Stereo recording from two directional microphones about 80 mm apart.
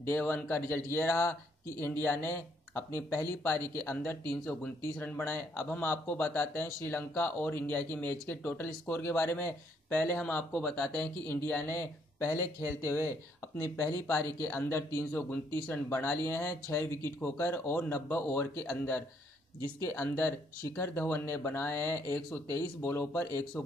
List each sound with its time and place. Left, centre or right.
0.0 s speech: left
10.1 s speech: centre; by 13.1 s left
13.6 s speech: left
14.4 s speech: left
15.1 s speech: left